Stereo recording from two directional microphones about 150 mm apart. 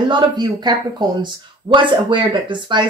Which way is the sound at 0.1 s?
30° right (ahead or behind).